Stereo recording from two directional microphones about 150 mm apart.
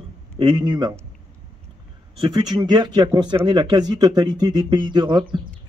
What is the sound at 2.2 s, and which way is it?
Speech, 30° right (ahead or behind).